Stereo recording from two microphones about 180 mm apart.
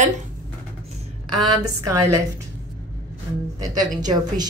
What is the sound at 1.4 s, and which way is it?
Speech, 20° right (ahead or behind).